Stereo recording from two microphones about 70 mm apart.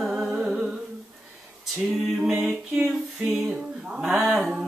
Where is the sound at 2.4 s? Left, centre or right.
Centre.